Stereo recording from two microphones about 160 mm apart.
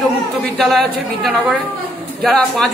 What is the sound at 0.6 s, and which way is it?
Speech, centre (ahead or behind).